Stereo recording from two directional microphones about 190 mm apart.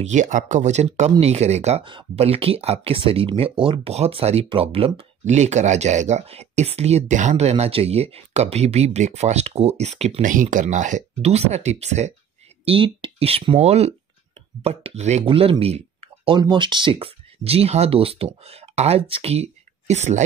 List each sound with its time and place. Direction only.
0.0 s speech: 40° right (ahead or behind)